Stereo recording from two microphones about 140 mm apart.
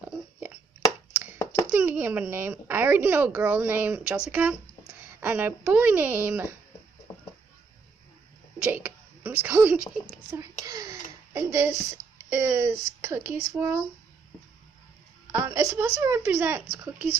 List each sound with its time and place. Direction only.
0.4 s chopping: 10° right (ahead or behind)
1.4 s a sound: 20° left (ahead or behind)
1.7 s a woman's voice: 15° right (ahead or behind)
8.6 s speech: 10° right (ahead or behind)
15.3 s a woman's voice: 20° right (ahead or behind)